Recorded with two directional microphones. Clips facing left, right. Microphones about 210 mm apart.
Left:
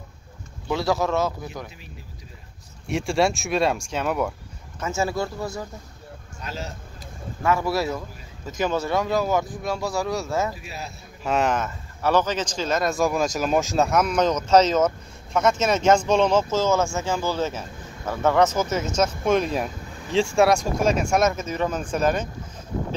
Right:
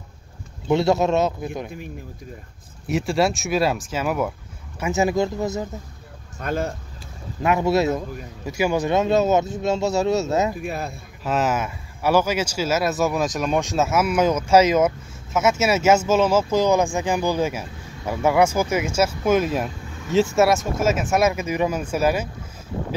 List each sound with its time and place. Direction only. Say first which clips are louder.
0.7 s speech: right 4 dB; 25° right (ahead or behind)
2.9 s speech: right 1 dB; centre (ahead or behind)
4.7 s speech: right 5 dB; 15° right (ahead or behind)
6.4 s speech: right 9 dB; 55° right (ahead or behind)
7.4 s speech: right 4 dB; 20° right (ahead or behind)
8.5 s speech: right 3 dB; 10° right (ahead or behind)
10.5 s speech: right 8 dB; 55° right (ahead or behind)
11.2 s speech: even; 5° right (ahead or behind)